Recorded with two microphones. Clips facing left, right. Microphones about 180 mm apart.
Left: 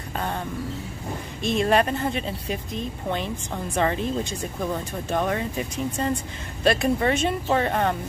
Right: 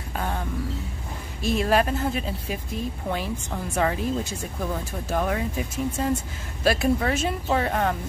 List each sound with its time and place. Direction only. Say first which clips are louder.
1.4 s speech: left 1 dB; 5° right (ahead or behind)